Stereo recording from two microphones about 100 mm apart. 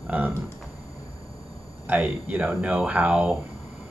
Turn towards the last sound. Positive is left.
turn(degrees=-10)  # may be behind; listen again after turning